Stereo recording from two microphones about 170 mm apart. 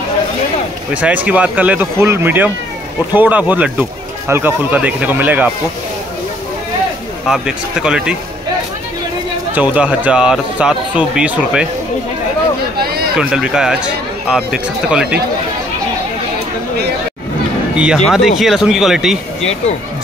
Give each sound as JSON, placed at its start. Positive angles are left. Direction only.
{"t": 1.0, "sound": "speech", "side_deg": -10}
{"t": 7.2, "sound": "speech", "side_deg": -5}
{"t": 9.5, "sound": "speech", "side_deg": -10}
{"t": 12.7, "sound": "a sound", "side_deg": -65}
{"t": 13.1, "sound": "speech", "side_deg": -5}
{"t": 17.7, "sound": "speech", "side_deg": 0}